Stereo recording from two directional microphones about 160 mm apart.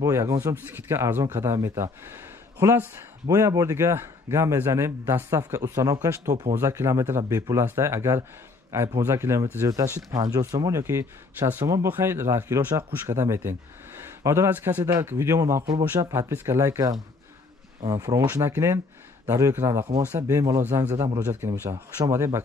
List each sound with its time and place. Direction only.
0.0 s a man's voice: 20° right (ahead or behind)